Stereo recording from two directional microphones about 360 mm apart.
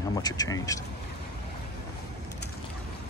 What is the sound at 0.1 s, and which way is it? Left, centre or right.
Speech, centre.